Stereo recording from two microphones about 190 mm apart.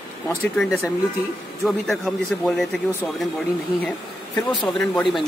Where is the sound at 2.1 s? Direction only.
Centre (ahead or behind).